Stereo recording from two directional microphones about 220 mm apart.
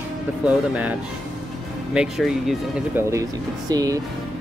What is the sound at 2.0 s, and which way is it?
Speech, centre (ahead or behind).